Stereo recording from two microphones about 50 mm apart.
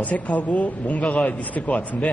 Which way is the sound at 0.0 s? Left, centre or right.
Left.